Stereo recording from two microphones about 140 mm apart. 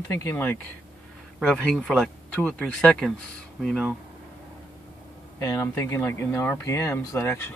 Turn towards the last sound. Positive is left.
turn(degrees=15)  # may be behind; listen again after turning